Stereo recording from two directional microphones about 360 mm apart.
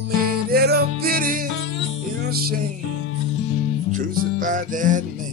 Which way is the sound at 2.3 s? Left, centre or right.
Right.